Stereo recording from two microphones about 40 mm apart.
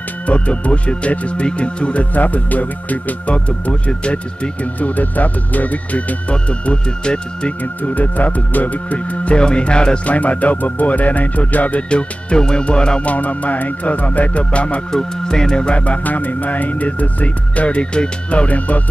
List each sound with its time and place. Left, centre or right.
0.3 s speech: left
2.1 s speech: left
4.7 s speech: left
6.3 s speech: left
7.9 s speech: left
10.0 s speech: left
11.9 s speech: left
13.0 s speech: left
14.9 s speech: centre
16.0 s speech: left